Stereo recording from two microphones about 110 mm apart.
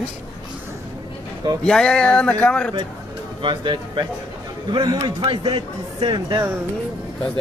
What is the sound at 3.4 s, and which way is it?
Speech, 45° right (ahead or behind).